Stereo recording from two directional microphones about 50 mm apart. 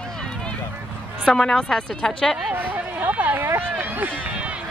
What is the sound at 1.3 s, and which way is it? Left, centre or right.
Speech, centre.